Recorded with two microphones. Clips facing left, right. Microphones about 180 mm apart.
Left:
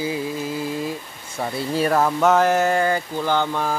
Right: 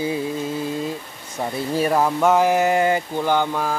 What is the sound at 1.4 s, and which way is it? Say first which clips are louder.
A man's voice: even; 15° right (ahead or behind).